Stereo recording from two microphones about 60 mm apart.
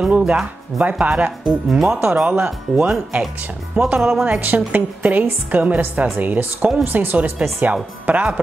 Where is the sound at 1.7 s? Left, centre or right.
Centre.